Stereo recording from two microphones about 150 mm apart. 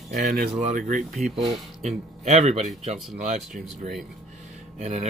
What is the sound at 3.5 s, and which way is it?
Speech, 60° right (ahead or behind).